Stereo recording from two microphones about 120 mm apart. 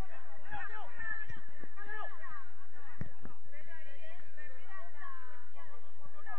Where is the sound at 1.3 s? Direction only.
15° right (ahead or behind).